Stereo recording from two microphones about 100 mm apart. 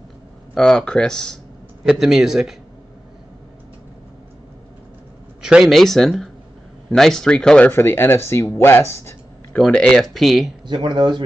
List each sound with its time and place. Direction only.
0.6 s speech: 5° left (ahead or behind)
1.9 s speech: 5° right (ahead or behind)
5.4 s speech: 5° right (ahead or behind); by 9.1 s 25° left (ahead or behind)
9.6 s speech: 10° left (ahead or behind)
10.7 s speech: 50° right (ahead or behind)